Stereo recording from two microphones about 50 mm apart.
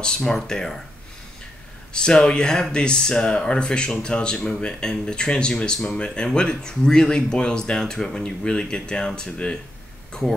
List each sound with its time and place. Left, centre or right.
0.0 s speech: centre
2.0 s speech: centre